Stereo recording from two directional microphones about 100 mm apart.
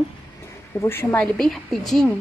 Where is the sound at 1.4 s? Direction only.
Centre (ahead or behind).